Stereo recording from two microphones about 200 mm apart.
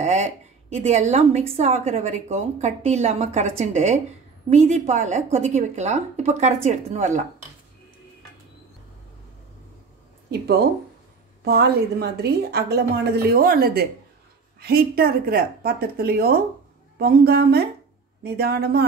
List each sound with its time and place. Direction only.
0.0 s a woman's voice: 35° right (ahead or behind)
10.4 s a woman's voice: 55° right (ahead or behind)